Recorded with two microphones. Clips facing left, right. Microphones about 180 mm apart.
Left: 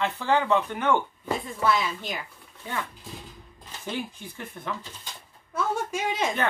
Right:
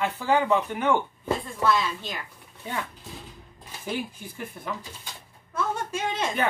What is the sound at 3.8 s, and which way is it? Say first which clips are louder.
Speech: right 1 dB; 10° right (ahead or behind).